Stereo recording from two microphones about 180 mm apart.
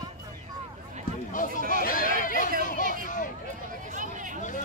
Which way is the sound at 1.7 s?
50° left (ahead or behind).